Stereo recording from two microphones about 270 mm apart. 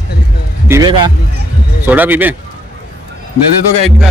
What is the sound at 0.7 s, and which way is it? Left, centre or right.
Speech, centre.